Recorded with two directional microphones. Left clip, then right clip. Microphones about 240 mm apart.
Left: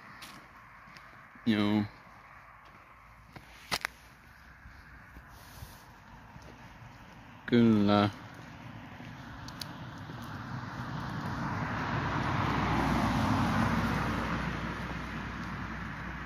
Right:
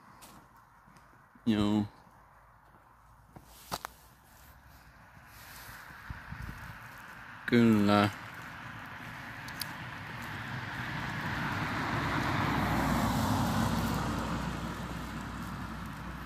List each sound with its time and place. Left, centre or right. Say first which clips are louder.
1.4 s speech: left 1 dB; centre
7.4 s speech: even; centre
8.3 s a sound: right 5 dB; right
10.3 s boat: right 2 dB; right
10.8 s vehicle: right 3 dB; right
11.1 s vehicle: right 2 dB; right
11.4 s vehicle: left 1 dB; right; by 16.2 s centre